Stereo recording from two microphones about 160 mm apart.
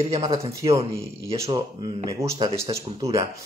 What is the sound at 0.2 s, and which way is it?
Speech, 20° right (ahead or behind).